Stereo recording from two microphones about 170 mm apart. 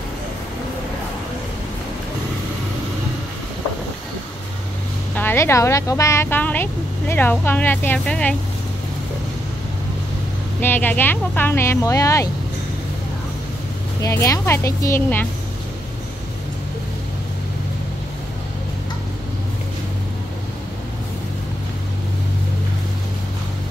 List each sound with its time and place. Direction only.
5.1 s a woman's voice: 15° left (ahead or behind)
10.6 s a woman's voice: 10° left (ahead or behind)
14.0 s a woman's voice: 20° left (ahead or behind)